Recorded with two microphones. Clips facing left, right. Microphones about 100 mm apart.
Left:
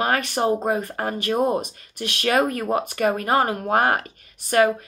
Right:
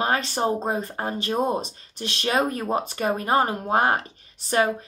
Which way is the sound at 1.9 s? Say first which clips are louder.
Left 3 dB; 30° right (ahead or behind).